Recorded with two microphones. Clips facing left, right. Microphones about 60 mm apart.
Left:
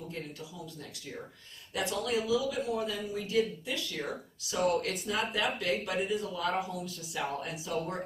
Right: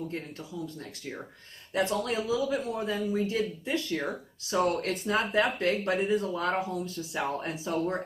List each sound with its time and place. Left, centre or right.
1.7 s speech: right